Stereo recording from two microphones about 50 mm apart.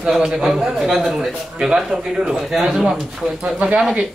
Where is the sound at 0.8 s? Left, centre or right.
Centre.